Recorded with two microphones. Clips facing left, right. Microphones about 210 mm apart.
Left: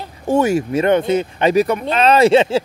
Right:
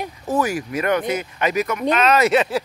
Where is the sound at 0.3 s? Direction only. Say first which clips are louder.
Left 7 dB; 25° left (ahead or behind).